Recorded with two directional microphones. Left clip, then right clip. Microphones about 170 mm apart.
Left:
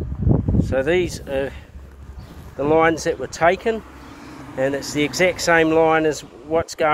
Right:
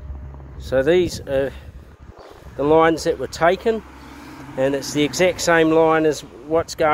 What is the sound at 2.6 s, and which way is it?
Speech, 20° right (ahead or behind).